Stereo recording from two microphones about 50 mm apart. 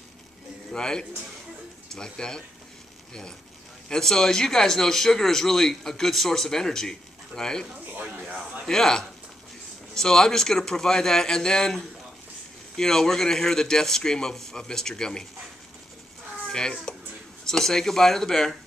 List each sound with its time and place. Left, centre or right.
0.7 s a man's voice: centre
3.9 s a man's voice: centre
8.6 s a man's voice: centre
16.5 s a man's voice: centre